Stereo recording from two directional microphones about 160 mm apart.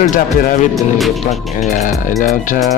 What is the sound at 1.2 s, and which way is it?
Speech, 45° left (ahead or behind).